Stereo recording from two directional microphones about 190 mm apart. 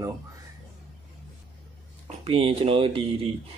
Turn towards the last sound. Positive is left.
turn(degrees=-30)  # may be behind; listen again after turning